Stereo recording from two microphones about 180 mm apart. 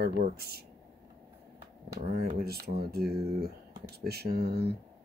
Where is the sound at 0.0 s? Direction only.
60° right (ahead or behind).